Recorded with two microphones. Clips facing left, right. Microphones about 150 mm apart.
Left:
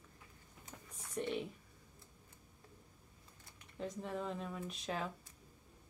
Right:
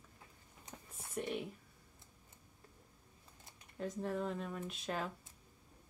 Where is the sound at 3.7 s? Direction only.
Centre (ahead or behind).